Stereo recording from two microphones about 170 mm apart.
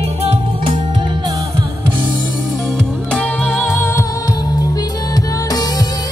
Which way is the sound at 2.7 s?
5° left (ahead or behind).